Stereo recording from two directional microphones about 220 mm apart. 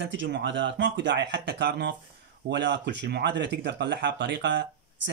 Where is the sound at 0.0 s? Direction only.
55° right (ahead or behind).